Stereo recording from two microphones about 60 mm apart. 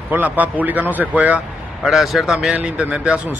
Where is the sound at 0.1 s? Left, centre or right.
Right.